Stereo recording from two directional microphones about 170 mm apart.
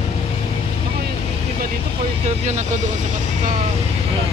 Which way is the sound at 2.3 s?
40° right (ahead or behind).